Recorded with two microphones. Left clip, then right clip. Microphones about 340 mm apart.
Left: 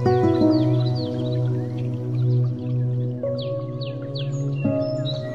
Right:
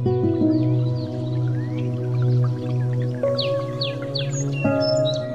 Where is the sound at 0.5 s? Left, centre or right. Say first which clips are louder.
Left 2 dB; left.